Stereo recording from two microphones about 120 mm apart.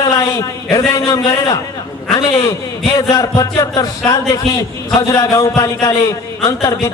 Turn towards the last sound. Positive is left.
turn(degrees=30)  # may be behind; listen again after turning